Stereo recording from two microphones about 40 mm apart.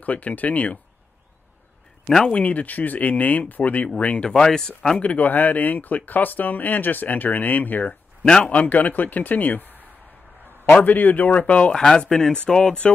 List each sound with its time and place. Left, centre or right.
0.0 s speech: left
2.0 s speech: centre
2.3 s speech: left
4.4 s speech: left
4.9 s speech: left
8.2 s speech: centre
8.5 s speech: left
10.8 s speech: left
11.7 s speech: centre